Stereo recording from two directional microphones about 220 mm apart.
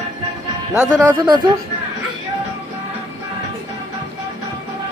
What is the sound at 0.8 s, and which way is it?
Speech, 5° right (ahead or behind).